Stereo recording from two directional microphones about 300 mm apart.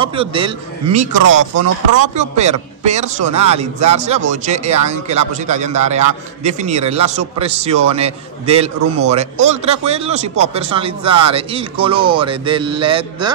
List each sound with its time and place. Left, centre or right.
0.0 s speech: centre
1.2 s speech: right
2.3 s a man's voice: right